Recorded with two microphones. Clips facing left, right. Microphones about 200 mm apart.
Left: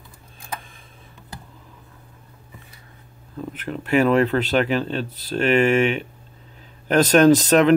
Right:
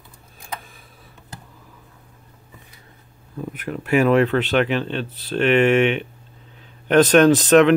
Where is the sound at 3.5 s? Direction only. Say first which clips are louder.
Right 1 dB; 10° right (ahead or behind).